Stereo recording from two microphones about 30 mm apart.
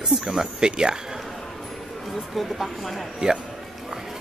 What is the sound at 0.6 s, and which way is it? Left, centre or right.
Speech, right.